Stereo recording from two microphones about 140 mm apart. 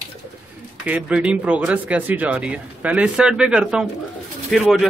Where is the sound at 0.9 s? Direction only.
10° right (ahead or behind).